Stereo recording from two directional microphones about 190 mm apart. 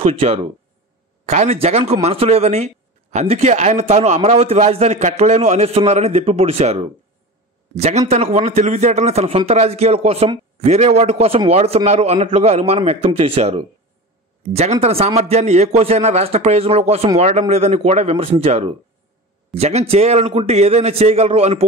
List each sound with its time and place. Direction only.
0.0 s a man's voice: 30° right (ahead or behind)